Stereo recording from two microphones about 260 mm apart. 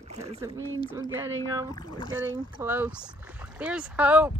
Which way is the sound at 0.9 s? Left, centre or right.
Centre.